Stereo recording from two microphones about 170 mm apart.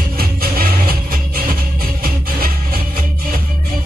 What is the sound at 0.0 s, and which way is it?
Music, 60° right (ahead or behind).